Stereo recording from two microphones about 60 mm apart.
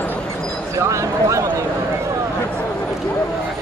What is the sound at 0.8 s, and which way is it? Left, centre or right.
Speech, right.